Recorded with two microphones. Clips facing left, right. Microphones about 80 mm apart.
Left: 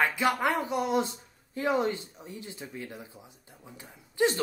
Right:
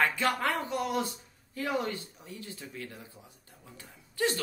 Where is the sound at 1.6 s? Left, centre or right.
Left.